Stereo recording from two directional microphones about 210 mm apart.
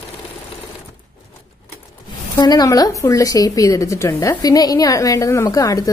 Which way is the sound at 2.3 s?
15° left (ahead or behind).